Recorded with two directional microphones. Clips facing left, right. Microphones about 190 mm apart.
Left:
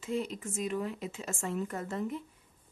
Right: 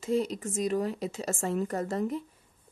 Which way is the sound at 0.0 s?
40° right (ahead or behind).